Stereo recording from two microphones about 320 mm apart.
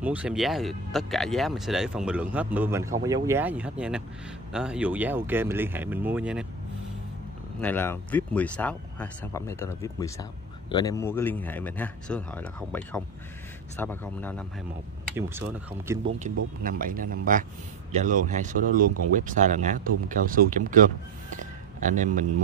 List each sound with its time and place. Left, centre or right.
0.0 s speech: centre
7.6 s speech: centre
15.1 s speech: centre
16.6 s speech: right
21.4 s a sound: right